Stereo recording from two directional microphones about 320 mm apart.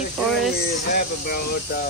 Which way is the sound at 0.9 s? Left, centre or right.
Left.